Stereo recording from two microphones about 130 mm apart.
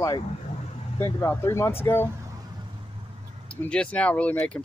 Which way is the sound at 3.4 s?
10° left (ahead or behind).